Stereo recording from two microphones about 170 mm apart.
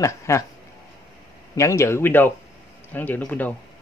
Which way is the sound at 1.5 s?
15° left (ahead or behind).